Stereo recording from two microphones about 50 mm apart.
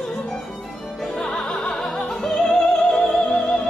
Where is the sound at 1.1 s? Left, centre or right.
Centre.